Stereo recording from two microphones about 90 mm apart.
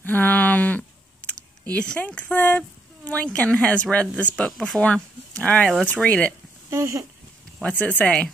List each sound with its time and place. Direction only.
0.0 s a sound: 20° left (ahead or behind)
1.3 s speech: 15° left (ahead or behind)
4.6 s speech: centre (ahead or behind)
4.8 s speech: 15° left (ahead or behind)
6.7 s speech: 35° right (ahead or behind)
7.6 s speech: 20° left (ahead or behind)